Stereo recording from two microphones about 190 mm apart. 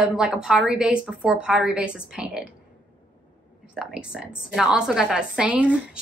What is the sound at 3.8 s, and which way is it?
A woman's voice, 5° right (ahead or behind).